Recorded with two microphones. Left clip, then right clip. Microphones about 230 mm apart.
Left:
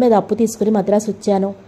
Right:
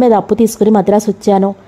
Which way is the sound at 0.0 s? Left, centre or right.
Right.